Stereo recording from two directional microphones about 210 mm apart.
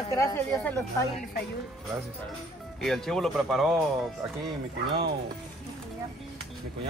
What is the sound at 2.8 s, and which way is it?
Speech, centre (ahead or behind).